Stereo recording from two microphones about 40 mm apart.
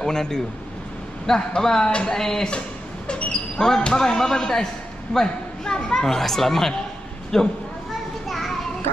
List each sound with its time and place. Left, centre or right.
0.0 s speech: centre
3.1 s a sound: left
3.8 s speech: centre
6.0 s speech: centre
8.3 s children playing: centre